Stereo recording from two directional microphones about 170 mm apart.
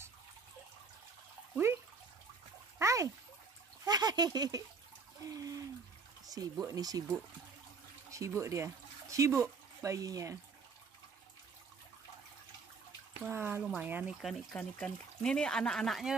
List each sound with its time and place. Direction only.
2.8 s splash: 20° right (ahead or behind)
3.8 s a sound: 25° right (ahead or behind)
6.3 s speech: 20° right (ahead or behind)
13.3 s speech: 10° right (ahead or behind)
14.2 s speech: 5° left (ahead or behind)